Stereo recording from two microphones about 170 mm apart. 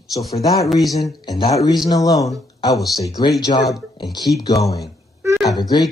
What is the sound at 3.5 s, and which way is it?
Speech, 35° left (ahead or behind).